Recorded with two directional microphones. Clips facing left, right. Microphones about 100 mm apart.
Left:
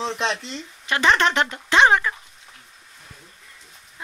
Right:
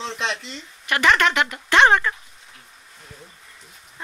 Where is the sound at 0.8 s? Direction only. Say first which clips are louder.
Even; 20° left (ahead or behind).